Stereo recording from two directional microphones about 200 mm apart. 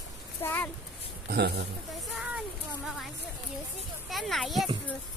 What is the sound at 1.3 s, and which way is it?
Speech, 55° right (ahead or behind).